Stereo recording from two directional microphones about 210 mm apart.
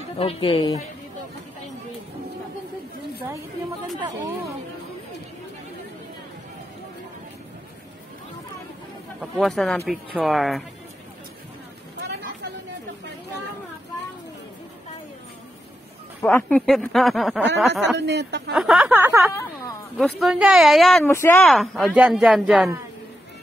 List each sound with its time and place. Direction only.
0.2 s speech: 25° left (ahead or behind)
9.2 s speech: centre (ahead or behind)
16.2 s speech: 5° left (ahead or behind)
17.9 s speech: 55° right (ahead or behind)
18.5 s speech: centre (ahead or behind)